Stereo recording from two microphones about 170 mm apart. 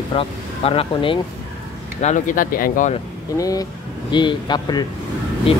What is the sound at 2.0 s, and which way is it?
Speech, 45° left (ahead or behind).